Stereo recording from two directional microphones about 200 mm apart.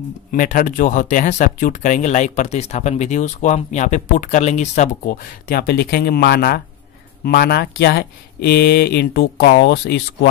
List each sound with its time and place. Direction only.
0.3 s speech: 40° left (ahead or behind); by 10.0 s 60° left (ahead or behind)